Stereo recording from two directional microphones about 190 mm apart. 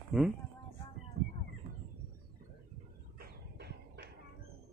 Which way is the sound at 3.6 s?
60° right (ahead or behind).